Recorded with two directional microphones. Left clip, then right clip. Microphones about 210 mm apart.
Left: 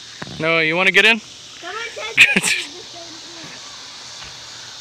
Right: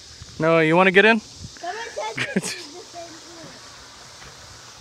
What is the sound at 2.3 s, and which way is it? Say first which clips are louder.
Speech: left 11 dB; 10° right (ahead or behind).